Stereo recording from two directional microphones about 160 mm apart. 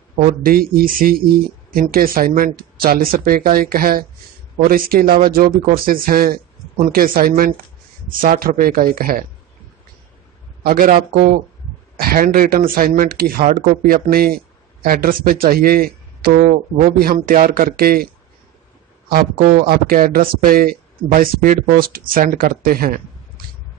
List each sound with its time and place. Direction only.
0.2 s speech: 60° right (ahead or behind)
10.6 s speech: 60° right (ahead or behind)
19.0 s speech: 70° right (ahead or behind)